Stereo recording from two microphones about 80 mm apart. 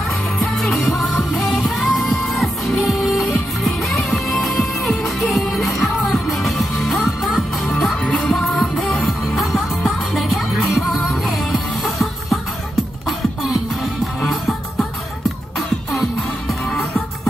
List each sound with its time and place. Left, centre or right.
0.4 s music: centre
15.9 s music: centre